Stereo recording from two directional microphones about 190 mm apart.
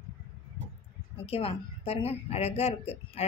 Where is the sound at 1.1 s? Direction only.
30° left (ahead or behind).